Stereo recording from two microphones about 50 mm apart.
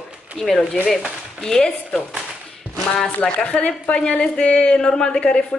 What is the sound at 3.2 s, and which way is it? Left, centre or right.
A woman's voice, centre.